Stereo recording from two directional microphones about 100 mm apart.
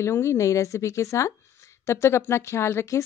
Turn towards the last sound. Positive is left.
turn(degrees=25)  # may be behind; listen again after turning